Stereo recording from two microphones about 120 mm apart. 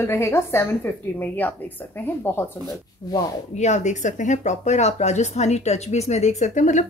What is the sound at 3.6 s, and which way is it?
A woman's voice, 80° left.